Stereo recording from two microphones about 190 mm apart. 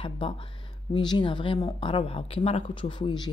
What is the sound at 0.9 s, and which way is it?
Speech, 25° left (ahead or behind).